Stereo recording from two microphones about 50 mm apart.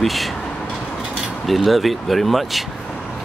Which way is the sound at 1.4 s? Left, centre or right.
Centre.